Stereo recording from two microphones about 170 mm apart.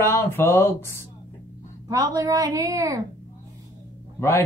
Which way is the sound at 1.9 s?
20° right (ahead or behind).